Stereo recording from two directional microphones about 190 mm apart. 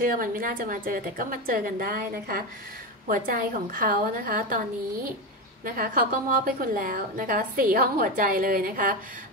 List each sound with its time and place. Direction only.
0.0 s a woman's voice: 50° right (ahead or behind)
5.7 s a woman's voice: 50° right (ahead or behind)